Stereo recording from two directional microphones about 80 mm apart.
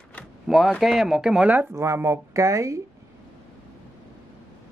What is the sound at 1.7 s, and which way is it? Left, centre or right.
Speech, right.